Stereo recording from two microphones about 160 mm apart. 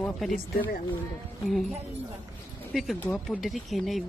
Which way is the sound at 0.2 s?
Centre (ahead or behind).